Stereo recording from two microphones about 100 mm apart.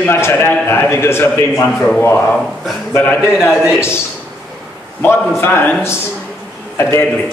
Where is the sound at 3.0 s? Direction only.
20° left (ahead or behind).